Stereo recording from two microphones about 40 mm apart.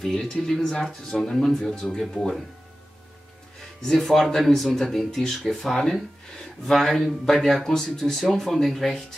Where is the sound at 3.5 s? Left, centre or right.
Centre.